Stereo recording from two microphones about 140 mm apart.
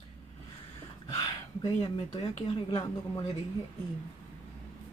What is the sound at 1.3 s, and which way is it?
Speech, 30° left (ahead or behind).